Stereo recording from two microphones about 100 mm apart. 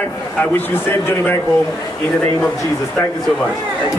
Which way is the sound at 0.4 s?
20° left (ahead or behind).